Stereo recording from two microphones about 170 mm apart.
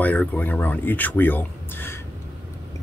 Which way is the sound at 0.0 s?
10° left (ahead or behind).